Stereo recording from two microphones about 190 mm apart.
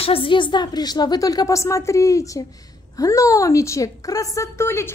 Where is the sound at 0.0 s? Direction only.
30° left (ahead or behind).